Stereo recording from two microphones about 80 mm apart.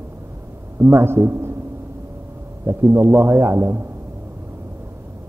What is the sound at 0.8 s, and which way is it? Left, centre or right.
Speech, right.